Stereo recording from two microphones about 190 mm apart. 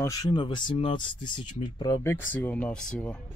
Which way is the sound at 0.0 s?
20° left (ahead or behind).